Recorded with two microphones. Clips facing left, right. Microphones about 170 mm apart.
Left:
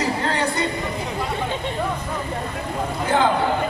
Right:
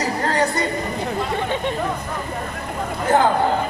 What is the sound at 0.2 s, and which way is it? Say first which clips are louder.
Music: right 2 dB; 45° right (ahead or behind).